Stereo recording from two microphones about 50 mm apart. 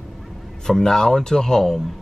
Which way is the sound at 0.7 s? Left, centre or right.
Centre.